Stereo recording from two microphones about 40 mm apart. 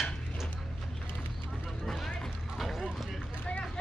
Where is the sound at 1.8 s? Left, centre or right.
Centre.